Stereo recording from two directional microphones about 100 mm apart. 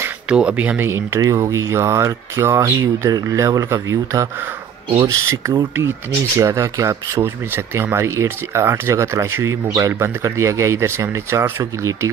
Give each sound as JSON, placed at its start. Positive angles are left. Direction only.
{"t": 0.3, "sound": "speech", "side_deg": -10}